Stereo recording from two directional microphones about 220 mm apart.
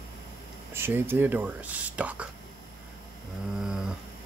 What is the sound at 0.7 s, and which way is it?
Speech, 10° right (ahead or behind).